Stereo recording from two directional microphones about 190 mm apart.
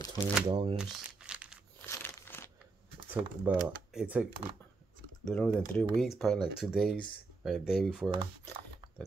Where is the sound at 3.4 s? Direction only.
5° right (ahead or behind).